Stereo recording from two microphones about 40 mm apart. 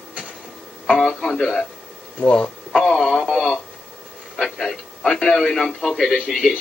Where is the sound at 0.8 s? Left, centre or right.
Centre.